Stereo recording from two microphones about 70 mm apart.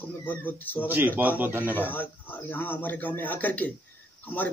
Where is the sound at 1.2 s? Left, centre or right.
Right.